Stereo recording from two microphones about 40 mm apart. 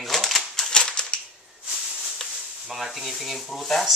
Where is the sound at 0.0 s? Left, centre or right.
Centre.